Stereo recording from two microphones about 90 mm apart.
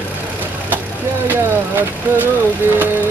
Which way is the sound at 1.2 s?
25° right (ahead or behind).